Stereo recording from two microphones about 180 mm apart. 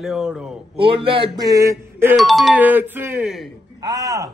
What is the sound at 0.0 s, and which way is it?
Speech, centre (ahead or behind).